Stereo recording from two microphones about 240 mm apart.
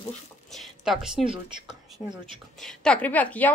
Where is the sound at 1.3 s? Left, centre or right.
Centre.